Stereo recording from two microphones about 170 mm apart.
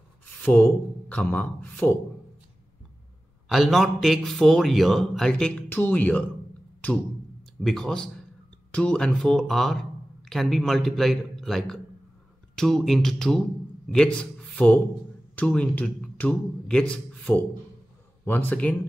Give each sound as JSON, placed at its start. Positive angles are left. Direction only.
{"t": 0.3, "sound": "speech", "side_deg": 5}
{"t": 3.4, "sound": "a man's voice", "side_deg": 0}